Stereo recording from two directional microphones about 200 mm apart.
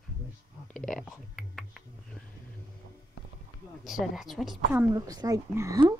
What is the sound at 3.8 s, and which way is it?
A woman's voice, centre (ahead or behind).